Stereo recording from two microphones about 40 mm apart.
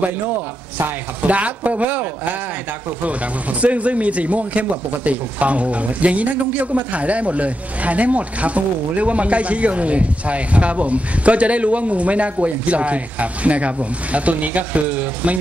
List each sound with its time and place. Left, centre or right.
1.2 s speech: right
3.1 s speech: right